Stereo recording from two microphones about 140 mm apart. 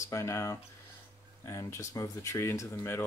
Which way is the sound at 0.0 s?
20° left (ahead or behind).